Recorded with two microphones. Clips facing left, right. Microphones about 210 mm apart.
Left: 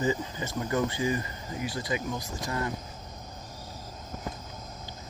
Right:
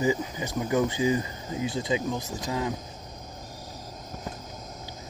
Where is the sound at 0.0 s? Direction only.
15° right (ahead or behind).